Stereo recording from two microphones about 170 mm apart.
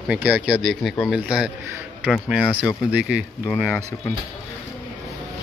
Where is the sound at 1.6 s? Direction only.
15° right (ahead or behind).